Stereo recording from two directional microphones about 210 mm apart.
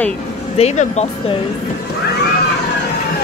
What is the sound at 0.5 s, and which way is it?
Speech, 30° left (ahead or behind).